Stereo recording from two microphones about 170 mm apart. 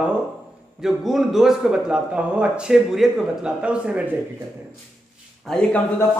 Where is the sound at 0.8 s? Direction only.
Centre (ahead or behind).